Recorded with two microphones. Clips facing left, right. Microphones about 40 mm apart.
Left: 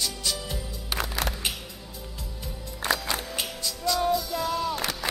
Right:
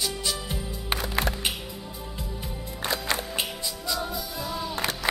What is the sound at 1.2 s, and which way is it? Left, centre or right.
Music, left.